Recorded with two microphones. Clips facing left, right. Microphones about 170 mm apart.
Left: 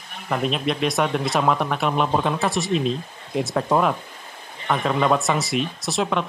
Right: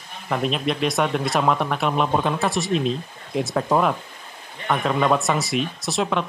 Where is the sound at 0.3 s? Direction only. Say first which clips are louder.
Even; centre (ahead or behind).